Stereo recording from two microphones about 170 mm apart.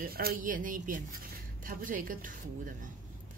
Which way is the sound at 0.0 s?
60° right (ahead or behind).